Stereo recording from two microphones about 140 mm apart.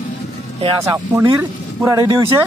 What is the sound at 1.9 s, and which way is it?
Speech, 30° right (ahead or behind).